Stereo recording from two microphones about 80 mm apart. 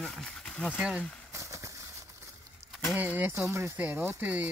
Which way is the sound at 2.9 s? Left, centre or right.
Centre.